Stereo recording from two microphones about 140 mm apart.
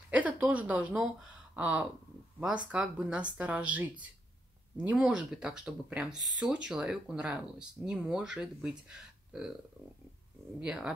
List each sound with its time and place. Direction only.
0.1 s speech: 10° right (ahead or behind)
10.6 s speech: 5° right (ahead or behind)